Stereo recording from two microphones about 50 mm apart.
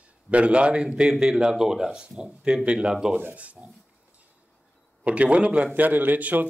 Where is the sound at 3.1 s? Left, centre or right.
Right.